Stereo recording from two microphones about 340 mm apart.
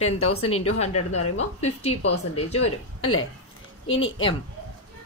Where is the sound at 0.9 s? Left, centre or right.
Left.